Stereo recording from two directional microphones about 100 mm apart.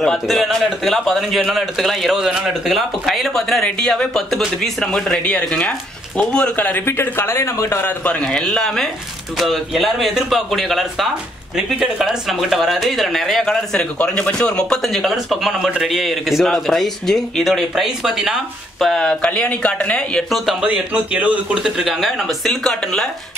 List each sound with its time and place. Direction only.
0.0 s speech: centre (ahead or behind); by 8.1 s 25° left (ahead or behind)
8.1 s speech: 10° left (ahead or behind)
20.2 s speech: 5° right (ahead or behind)